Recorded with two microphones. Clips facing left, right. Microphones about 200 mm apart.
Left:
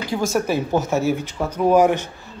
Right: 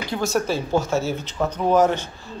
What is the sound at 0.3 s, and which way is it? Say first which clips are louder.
Speech: even; 15° left (ahead or behind).